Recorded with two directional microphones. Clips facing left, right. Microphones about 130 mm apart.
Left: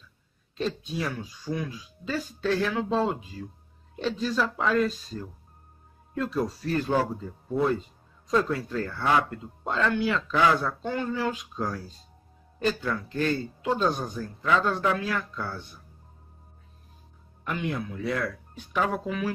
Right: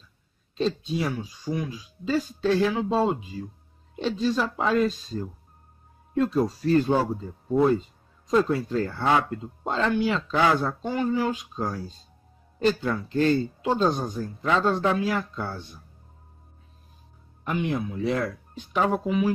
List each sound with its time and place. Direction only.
0.6 s speech: 25° right (ahead or behind)
10.8 s speech: 15° right (ahead or behind)
13.1 s speech: 30° right (ahead or behind)
17.5 s speech: 15° right (ahead or behind)